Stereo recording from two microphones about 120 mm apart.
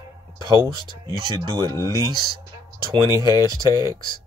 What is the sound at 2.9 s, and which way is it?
Speech, 30° right (ahead or behind).